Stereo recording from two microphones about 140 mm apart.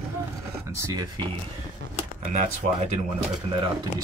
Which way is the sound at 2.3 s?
60° right (ahead or behind).